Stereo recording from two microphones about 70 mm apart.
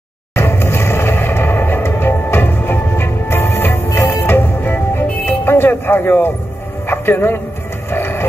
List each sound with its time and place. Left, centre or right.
0.4 s music: left
6.9 s speech: left
7.9 s a sound: left